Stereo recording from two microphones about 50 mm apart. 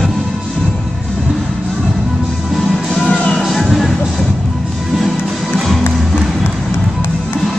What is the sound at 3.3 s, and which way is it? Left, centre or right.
Music, centre.